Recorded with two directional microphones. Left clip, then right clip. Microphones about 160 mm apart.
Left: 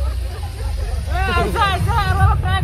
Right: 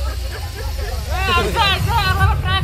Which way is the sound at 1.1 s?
60° left (ahead or behind).